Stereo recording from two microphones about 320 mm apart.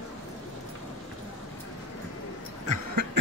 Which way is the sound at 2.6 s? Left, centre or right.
Right.